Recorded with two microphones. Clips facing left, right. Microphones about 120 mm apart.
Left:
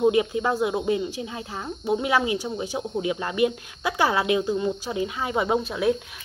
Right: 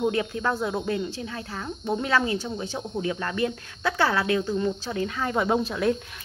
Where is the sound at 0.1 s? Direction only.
15° left (ahead or behind).